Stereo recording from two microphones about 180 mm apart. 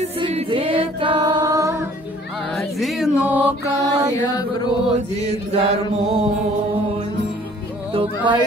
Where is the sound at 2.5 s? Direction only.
Centre (ahead or behind).